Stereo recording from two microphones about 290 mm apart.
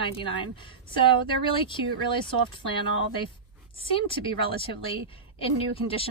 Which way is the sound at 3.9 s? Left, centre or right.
Centre.